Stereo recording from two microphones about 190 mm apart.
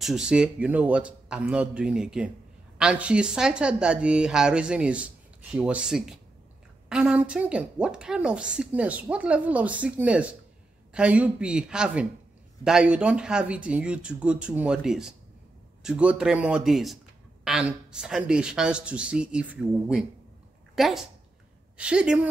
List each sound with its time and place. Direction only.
0.0 s a woman's voice: 5° right (ahead or behind)